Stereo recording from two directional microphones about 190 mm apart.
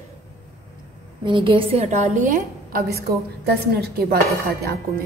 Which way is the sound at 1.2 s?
25° right (ahead or behind).